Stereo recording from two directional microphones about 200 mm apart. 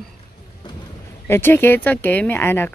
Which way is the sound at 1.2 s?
10° left (ahead or behind).